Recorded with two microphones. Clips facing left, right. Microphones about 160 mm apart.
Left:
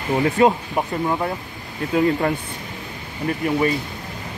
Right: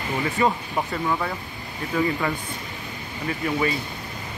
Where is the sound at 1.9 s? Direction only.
55° left (ahead or behind).